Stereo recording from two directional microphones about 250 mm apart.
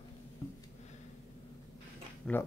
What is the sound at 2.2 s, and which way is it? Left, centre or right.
Speech, centre.